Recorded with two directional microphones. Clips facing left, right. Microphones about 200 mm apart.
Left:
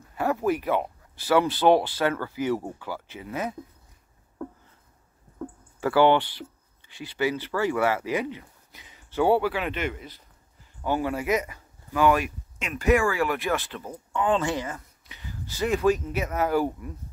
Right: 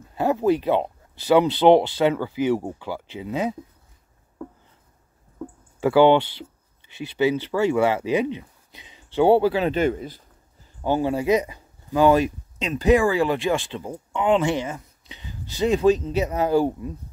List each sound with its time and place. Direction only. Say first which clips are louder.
0.1 s speech: right 5 dB; 25° right (ahead or behind)
5.8 s speech: right 4 dB; 15° right (ahead or behind)
12.7 s speech: right 4 dB; 20° right (ahead or behind)
13.6 s speech: right 5 dB; 15° right (ahead or behind)